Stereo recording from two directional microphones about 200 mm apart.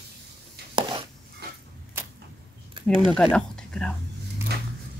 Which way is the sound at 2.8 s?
25° right (ahead or behind).